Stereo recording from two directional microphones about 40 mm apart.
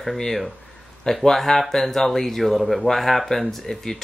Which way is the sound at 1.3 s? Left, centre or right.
Centre.